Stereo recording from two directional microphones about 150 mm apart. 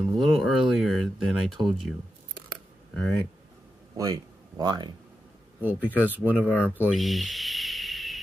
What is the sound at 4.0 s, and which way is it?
Speech, 25° right (ahead or behind).